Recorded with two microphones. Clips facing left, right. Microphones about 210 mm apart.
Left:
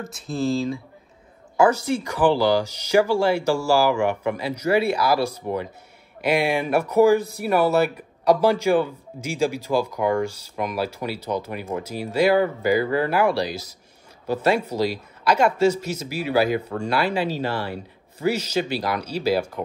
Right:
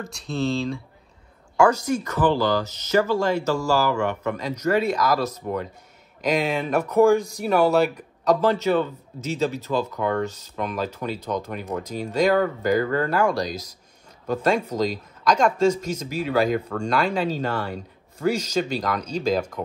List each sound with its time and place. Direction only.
1.6 s speech: 10° left (ahead or behind)